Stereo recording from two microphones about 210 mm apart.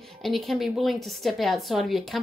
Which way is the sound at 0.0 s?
Centre (ahead or behind).